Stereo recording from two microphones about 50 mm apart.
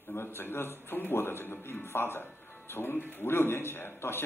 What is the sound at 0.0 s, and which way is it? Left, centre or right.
A man's voice, left.